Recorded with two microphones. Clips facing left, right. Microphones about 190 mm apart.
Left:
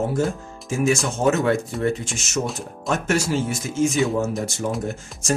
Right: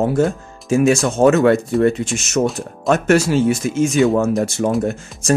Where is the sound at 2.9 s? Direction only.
65° right (ahead or behind).